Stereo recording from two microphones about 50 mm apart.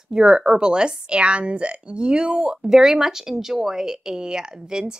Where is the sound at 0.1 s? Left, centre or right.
Centre.